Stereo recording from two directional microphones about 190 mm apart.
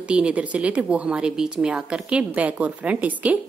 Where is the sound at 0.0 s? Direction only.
5° right (ahead or behind).